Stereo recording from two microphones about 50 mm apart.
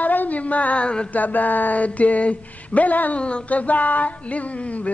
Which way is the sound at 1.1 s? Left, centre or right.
Left.